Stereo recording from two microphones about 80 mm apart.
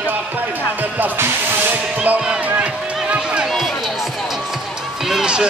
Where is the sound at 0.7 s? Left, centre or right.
Right.